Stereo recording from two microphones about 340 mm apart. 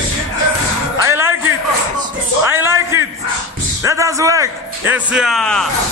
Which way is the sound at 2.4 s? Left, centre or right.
Centre.